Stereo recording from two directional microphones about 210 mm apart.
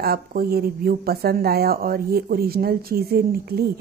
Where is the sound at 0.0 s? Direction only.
45° right (ahead or behind).